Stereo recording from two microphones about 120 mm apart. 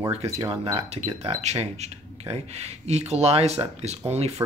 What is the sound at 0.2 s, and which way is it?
Speech, 60° right (ahead or behind).